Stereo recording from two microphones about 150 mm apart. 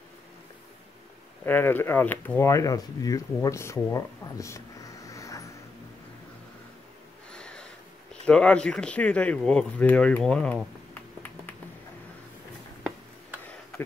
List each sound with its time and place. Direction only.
1.4 s speech: 15° left (ahead or behind)
7.2 s a sound: 5° left (ahead or behind)
8.1 s speech: 5° left (ahead or behind)